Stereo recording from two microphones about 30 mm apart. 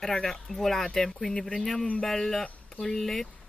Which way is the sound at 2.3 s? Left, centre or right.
Centre.